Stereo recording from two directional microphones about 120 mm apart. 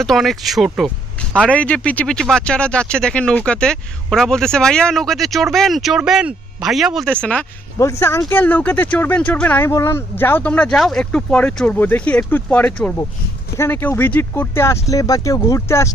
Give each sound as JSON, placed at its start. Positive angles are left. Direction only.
{"t": 0.0, "sound": "speech", "side_deg": 0}
{"t": 1.4, "sound": "speech", "side_deg": 10}
{"t": 7.1, "sound": "speech", "side_deg": 10}
{"t": 7.8, "sound": "speech", "side_deg": 20}